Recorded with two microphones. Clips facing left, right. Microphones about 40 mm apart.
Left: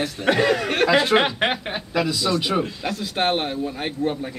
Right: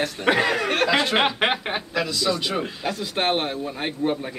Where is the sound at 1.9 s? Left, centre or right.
Centre.